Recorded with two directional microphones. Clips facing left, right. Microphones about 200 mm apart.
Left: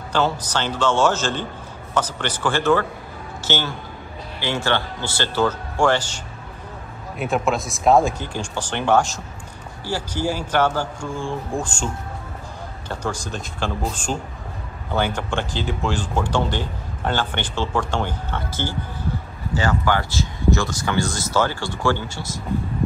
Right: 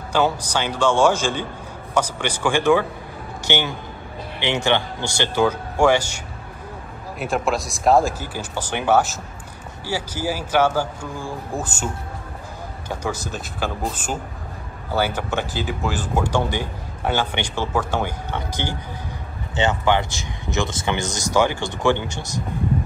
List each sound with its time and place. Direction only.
0.1 s a man's voice: 10° right (ahead or behind)